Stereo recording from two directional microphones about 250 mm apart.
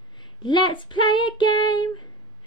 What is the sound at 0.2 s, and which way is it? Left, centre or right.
Child singing, centre.